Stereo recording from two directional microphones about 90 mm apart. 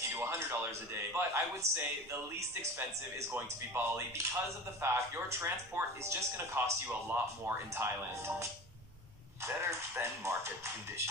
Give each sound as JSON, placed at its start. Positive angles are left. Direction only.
{"t": 0.1, "sound": "a man's voice", "side_deg": -30}
{"t": 3.2, "sound": "a man's voice", "side_deg": -30}
{"t": 9.6, "sound": "a man's voice", "side_deg": -30}